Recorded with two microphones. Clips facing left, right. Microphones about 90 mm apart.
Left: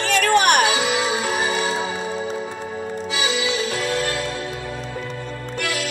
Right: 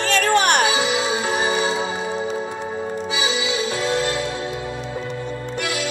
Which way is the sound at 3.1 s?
20° right (ahead or behind).